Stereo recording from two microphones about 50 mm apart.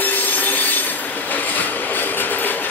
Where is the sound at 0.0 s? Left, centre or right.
Left.